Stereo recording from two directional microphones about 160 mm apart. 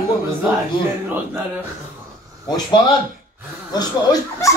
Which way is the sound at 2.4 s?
25° left (ahead or behind).